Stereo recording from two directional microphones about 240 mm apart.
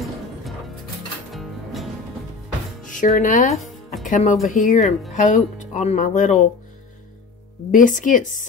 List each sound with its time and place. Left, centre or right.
1.3 s music: centre
2.8 s music: left
3.2 s speech: left
3.6 s music: centre
4.1 s speech: left
7.7 s speech: left